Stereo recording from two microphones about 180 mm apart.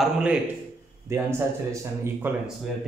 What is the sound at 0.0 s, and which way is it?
A man's voice, 5° right (ahead or behind).